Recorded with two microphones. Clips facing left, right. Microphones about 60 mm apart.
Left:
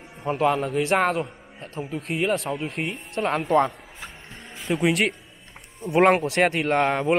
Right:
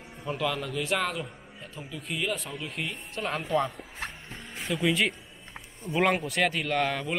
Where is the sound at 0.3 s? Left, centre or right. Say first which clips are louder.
Left 8 dB; left.